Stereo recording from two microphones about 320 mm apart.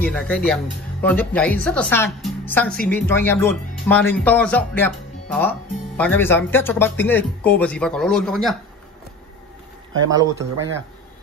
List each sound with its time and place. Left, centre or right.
0.0 s speech: centre
10.0 s speech: centre